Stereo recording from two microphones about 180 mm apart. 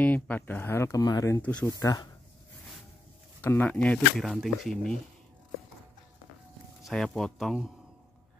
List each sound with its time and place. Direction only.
0.0 s speech: 10° left (ahead or behind)
1.4 s speech: 10° left (ahead or behind)
1.8 s speech: 20° left (ahead or behind)
3.3 s speech: 10° left (ahead or behind)
6.8 s speech: centre (ahead or behind)